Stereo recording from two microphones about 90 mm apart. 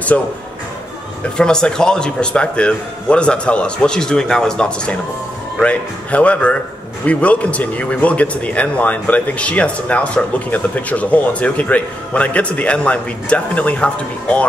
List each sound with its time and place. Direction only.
1.3 s speech: 10° left (ahead or behind)